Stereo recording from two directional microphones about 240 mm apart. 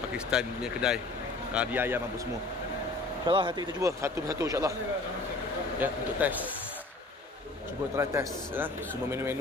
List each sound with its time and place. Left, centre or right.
0.3 s speech: centre
3.3 s speech: centre
5.8 s speech: centre
7.9 s speech: centre